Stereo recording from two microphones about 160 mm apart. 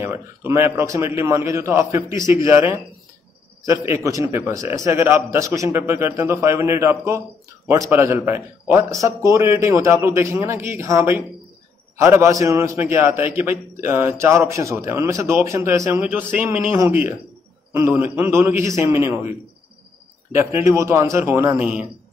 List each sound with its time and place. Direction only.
0.0 s a man's voice: 15° right (ahead or behind)
20.3 s a man's voice: 15° right (ahead or behind)